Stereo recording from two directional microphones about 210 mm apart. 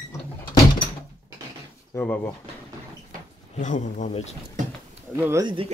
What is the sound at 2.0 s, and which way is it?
Speech, 10° left (ahead or behind).